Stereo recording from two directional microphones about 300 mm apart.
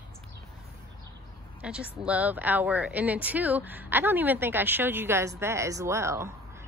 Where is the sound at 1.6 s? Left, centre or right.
Centre.